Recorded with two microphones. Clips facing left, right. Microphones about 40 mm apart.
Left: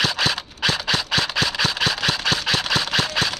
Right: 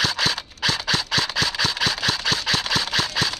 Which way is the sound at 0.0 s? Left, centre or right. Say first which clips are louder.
Left 1 dB; centre.